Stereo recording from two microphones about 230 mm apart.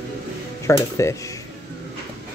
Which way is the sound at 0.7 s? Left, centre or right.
Centre.